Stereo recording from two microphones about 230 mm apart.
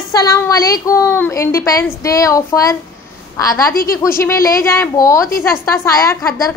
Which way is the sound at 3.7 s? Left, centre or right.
Left.